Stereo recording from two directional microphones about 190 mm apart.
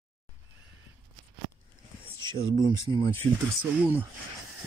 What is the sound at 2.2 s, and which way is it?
Speech, 25° right (ahead or behind).